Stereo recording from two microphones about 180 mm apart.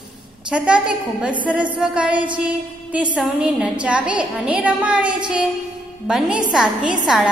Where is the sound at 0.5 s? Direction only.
5° right (ahead or behind).